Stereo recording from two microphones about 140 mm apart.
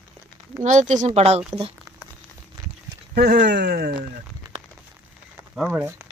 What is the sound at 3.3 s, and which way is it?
Speech, 90° right.